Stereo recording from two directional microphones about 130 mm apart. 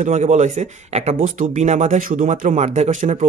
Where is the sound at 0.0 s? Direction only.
70° right (ahead or behind).